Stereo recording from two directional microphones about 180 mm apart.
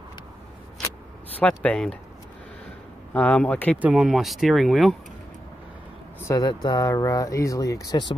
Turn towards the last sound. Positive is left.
turn(degrees=20)  # may be behind; listen again after turning